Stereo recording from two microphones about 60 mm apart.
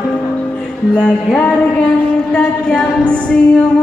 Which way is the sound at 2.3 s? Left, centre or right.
Centre.